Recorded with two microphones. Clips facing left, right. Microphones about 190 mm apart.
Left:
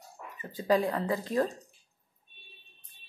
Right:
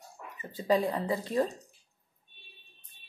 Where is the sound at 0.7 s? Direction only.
20° right (ahead or behind).